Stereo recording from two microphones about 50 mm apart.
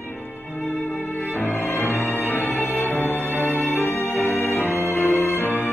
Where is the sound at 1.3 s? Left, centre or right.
Left.